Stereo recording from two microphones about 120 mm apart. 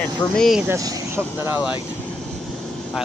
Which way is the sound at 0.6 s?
20° right (ahead or behind).